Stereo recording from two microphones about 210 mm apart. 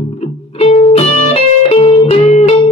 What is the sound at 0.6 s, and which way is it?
Music, 30° left (ahead or behind).